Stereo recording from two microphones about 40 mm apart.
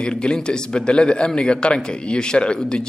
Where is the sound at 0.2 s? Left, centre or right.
Left.